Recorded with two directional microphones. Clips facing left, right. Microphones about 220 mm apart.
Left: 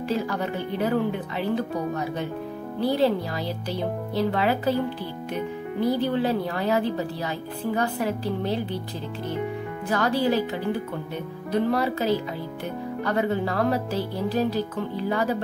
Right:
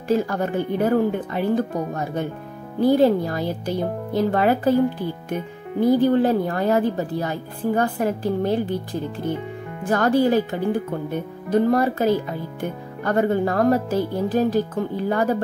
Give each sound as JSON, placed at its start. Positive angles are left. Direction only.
{"t": 0.1, "sound": "a woman's voice", "side_deg": -50}